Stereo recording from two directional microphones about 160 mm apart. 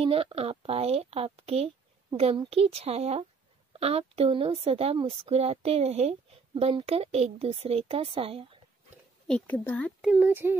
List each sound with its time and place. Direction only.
0.0 s a woman's voice: 35° right (ahead or behind)
9.3 s speech: 10° left (ahead or behind)
10.0 s speech: 10° right (ahead or behind)